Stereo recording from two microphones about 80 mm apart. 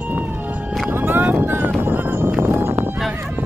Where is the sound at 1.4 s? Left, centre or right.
Right.